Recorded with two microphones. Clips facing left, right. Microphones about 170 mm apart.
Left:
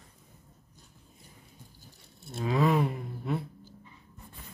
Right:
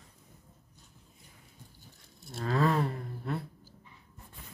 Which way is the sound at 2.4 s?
15° left (ahead or behind).